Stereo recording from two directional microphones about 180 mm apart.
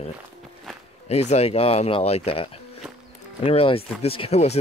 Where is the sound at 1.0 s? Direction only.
35° left (ahead or behind).